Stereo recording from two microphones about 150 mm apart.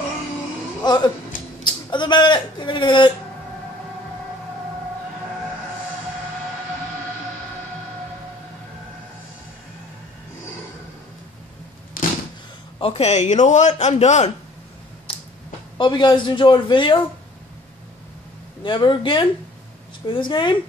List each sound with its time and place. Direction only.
0.8 s speech: 30° left (ahead or behind)
12.0 s a sound: 70° left (ahead or behind)
12.7 s a man's voice: 40° left (ahead or behind)
15.1 s a sound: 35° left (ahead or behind)
15.8 s a man's voice: 30° left (ahead or behind)
18.6 s a man's voice: 30° left (ahead or behind)